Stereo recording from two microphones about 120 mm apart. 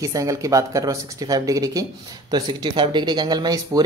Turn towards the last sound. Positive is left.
turn(degrees=-35)  # may be behind; listen again after turning